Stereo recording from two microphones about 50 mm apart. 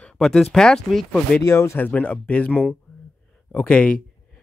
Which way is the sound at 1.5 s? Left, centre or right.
Left.